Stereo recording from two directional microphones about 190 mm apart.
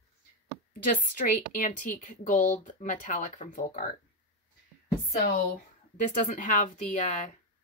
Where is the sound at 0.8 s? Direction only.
45° left (ahead or behind).